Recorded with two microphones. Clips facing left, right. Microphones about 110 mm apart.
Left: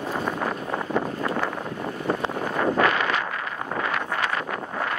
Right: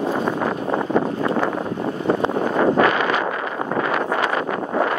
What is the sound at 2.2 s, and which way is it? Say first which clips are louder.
Wind noise: right 7 dB; 45° right (ahead or behind).